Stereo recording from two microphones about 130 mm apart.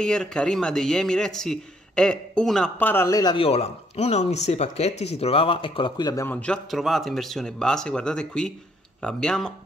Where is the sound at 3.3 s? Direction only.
50° left (ahead or behind); by 6.2 s 30° left (ahead or behind).